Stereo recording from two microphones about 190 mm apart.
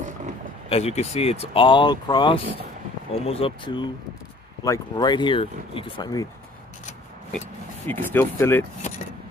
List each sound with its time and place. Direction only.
0.7 s speech: 35° left (ahead or behind)
7.8 s speech: 10° left (ahead or behind)